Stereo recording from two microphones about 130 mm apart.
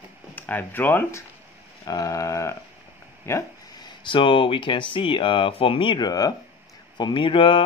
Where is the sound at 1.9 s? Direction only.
25° left (ahead or behind).